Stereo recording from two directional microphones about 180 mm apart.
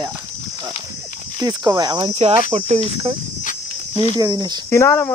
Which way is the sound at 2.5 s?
35° right (ahead or behind).